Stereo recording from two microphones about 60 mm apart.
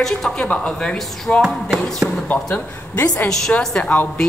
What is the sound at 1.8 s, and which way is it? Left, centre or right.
Speech, centre.